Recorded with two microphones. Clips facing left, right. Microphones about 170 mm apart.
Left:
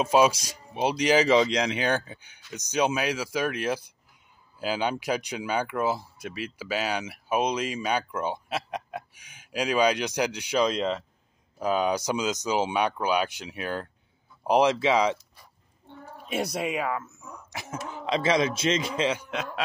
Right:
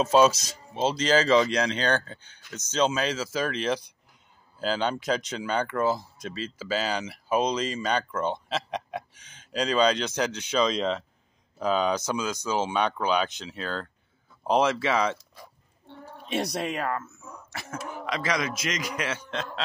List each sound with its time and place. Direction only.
0.0 s speech: 10° left (ahead or behind)
16.3 s speech: 5° left (ahead or behind)
17.3 s throat clearing: 15° left (ahead or behind)
17.8 s a man's voice: 25° left (ahead or behind)
19.1 s speech: 10° left (ahead or behind)